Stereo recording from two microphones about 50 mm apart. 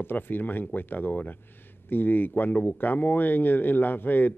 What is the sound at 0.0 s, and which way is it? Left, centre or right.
Speech, left.